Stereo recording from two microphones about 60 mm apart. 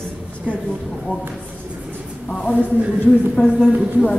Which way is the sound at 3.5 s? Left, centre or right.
Centre.